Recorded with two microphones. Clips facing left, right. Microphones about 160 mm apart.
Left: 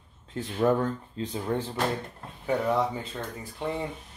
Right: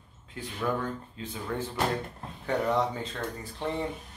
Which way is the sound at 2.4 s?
10° left (ahead or behind).